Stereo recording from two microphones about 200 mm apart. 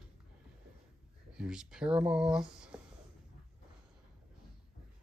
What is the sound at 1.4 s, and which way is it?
Speech, 5° right (ahead or behind).